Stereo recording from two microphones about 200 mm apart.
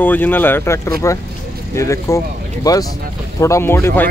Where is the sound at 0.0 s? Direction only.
10° left (ahead or behind).